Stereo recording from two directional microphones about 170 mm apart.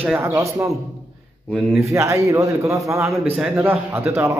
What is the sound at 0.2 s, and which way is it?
Speech, 15° right (ahead or behind).